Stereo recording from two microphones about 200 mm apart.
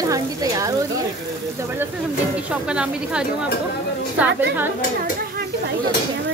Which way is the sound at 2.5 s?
5° right (ahead or behind).